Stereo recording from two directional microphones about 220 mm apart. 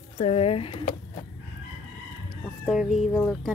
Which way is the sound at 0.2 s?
30° left (ahead or behind).